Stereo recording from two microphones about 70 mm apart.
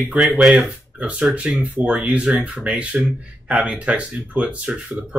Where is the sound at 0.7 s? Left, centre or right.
Centre.